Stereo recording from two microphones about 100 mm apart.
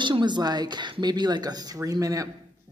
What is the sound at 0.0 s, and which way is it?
A woman's voice, 50° right (ahead or behind).